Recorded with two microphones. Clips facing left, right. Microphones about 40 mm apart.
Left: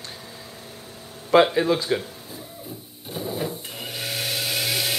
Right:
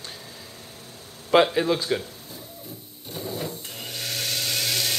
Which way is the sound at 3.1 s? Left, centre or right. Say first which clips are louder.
Left 3 dB; centre.